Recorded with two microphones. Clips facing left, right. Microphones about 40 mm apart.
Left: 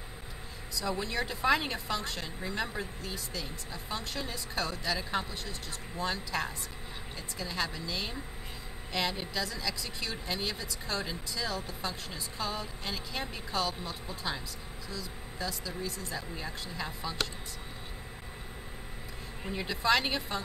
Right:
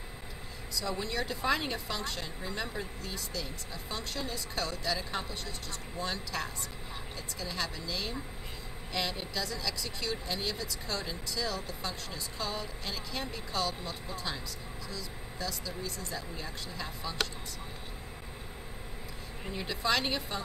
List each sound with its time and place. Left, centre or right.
0.7 s a woman's voice: centre
19.4 s a woman's voice: centre